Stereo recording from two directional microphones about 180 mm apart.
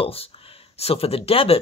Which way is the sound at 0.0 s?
30° left (ahead or behind).